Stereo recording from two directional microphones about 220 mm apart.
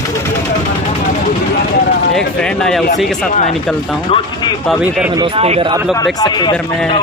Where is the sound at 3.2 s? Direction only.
35° left (ahead or behind).